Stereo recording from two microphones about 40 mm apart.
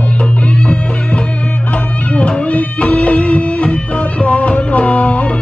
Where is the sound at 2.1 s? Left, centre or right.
Left.